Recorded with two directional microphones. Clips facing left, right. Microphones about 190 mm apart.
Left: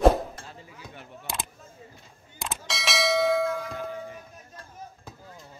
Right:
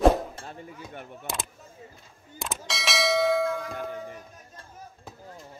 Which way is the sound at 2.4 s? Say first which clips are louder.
Even; centre (ahead or behind).